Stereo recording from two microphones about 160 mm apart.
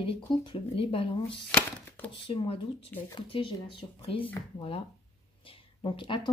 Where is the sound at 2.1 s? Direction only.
35° left (ahead or behind).